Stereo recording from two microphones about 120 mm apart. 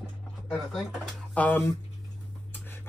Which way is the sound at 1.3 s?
15° left (ahead or behind).